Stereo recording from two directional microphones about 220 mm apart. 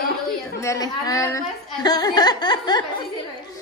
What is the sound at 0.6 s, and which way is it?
Speech, 15° left (ahead or behind).